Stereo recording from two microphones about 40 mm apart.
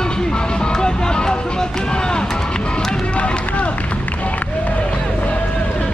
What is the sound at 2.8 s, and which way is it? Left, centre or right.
Run, centre.